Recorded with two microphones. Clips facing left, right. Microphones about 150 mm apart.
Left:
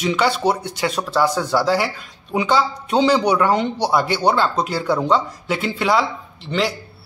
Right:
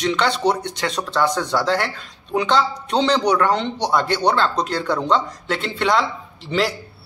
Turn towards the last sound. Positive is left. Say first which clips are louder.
# even
turn(degrees=0)  # may be behind; listen again after turning